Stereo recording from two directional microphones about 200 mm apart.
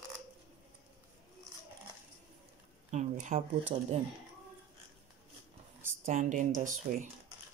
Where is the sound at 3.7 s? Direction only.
30° right (ahead or behind).